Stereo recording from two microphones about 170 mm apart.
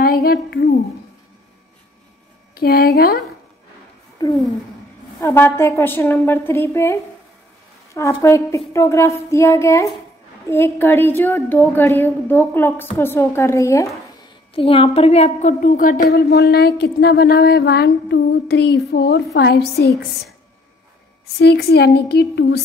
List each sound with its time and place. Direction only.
0.0 s a sound: 65° left (ahead or behind)
2.5 s a woman's voice: 65° left (ahead or behind)
4.2 s a sound: 25° left (ahead or behind)
5.2 s a woman's voice: 15° left (ahead or behind)
14.5 s a woman's voice: 35° left (ahead or behind); by 19.9 s 75° left (ahead or behind)
21.4 s a woman's voice: 75° left (ahead or behind)